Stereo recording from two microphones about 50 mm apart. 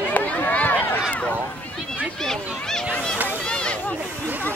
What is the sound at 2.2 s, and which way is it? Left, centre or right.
Speech, centre.